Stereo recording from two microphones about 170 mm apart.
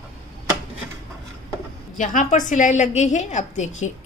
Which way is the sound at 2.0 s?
45° left (ahead or behind).